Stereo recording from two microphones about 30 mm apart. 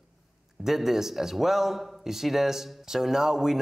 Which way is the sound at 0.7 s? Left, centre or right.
Centre.